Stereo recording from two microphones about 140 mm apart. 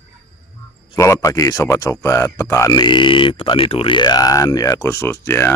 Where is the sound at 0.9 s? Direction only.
20° left (ahead or behind).